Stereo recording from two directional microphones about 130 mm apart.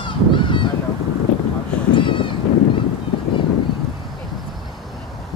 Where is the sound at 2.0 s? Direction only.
40° left (ahead or behind).